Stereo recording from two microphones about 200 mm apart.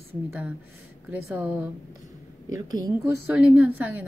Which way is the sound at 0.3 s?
5° right (ahead or behind).